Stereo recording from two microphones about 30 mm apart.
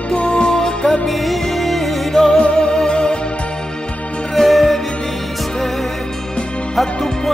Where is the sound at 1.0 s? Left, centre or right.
Centre.